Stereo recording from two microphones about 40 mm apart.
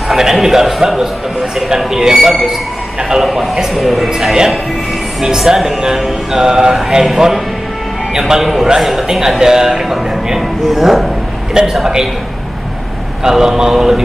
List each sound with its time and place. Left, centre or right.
0.1 s a man's voice: centre
9.0 s speech: centre
11.6 s a man's voice: centre
13.2 s speech: centre